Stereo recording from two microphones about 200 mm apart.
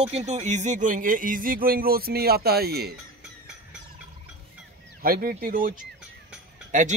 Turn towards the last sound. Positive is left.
turn(degrees=-40)  # may be behind; listen again after turning